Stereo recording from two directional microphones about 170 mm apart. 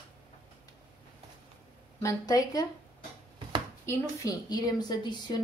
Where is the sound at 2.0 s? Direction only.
20° left (ahead or behind).